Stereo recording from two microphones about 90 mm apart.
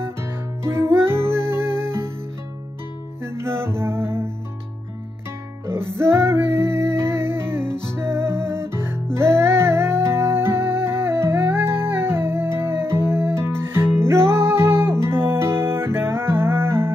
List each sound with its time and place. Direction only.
0.7 s music: 30° right (ahead or behind)
3.3 s music: 30° right (ahead or behind)
5.7 s music: 30° right (ahead or behind)